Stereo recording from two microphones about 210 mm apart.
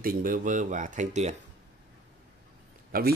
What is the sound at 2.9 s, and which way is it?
Speech, 45° right (ahead or behind).